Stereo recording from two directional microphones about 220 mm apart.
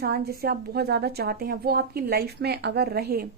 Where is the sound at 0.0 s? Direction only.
45° right (ahead or behind).